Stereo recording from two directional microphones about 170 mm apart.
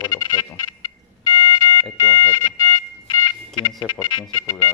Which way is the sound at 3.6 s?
25° left (ahead or behind).